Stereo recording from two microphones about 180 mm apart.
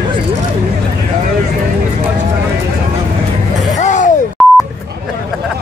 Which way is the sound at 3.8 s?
40° left (ahead or behind).